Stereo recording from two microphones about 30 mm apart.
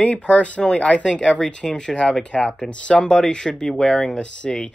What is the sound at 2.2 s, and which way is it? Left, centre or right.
Speech, left.